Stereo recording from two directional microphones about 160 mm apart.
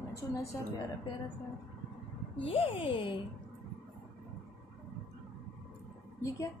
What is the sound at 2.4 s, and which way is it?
Speech, 35° left (ahead or behind).